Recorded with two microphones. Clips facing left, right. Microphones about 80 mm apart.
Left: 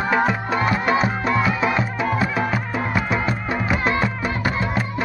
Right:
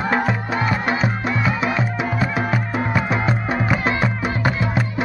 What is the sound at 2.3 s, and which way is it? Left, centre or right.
Music, centre.